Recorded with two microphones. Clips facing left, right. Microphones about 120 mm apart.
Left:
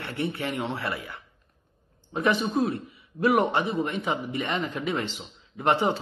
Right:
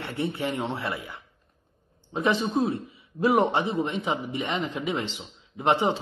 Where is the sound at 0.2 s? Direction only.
25° right (ahead or behind).